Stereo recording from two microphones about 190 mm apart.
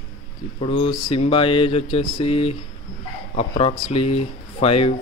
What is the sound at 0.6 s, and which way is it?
Mantra, 30° left (ahead or behind).